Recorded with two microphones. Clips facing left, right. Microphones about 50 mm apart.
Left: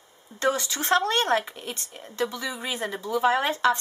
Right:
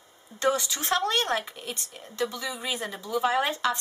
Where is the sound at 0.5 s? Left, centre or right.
Centre.